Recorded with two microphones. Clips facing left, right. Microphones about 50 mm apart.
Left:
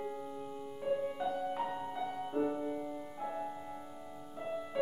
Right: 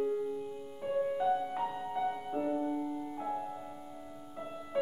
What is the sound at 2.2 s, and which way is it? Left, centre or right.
Music, centre.